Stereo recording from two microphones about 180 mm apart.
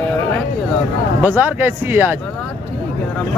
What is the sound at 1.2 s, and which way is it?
Speech, 10° right (ahead or behind).